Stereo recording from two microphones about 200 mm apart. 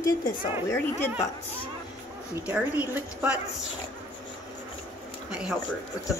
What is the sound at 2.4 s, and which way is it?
Speech, 5° right (ahead or behind).